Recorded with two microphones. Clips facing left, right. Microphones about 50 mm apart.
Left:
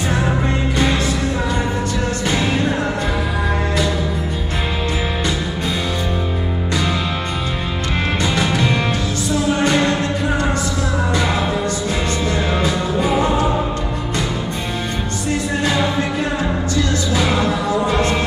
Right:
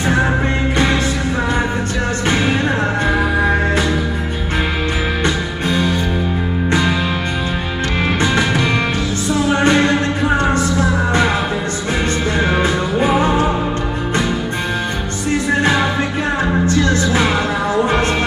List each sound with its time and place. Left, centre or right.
2.2 s music: right
8.2 s music: right
12.6 s music: right
15.6 s music: right